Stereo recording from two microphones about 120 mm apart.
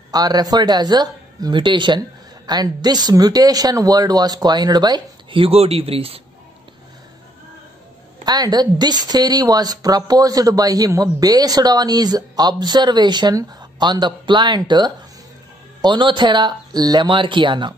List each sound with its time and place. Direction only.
0.1 s speech: 35° right (ahead or behind); by 6.2 s 55° right (ahead or behind)
8.3 s speech: 35° right (ahead or behind)